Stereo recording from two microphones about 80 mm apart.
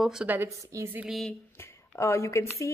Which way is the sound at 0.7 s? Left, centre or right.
Right.